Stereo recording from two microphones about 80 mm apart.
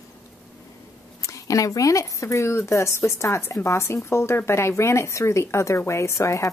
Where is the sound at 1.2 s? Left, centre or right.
Left.